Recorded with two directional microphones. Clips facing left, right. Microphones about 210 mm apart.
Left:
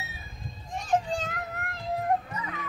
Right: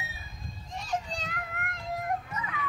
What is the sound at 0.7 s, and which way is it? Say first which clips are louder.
Children playing: left 7 dB; 50° left (ahead or behind).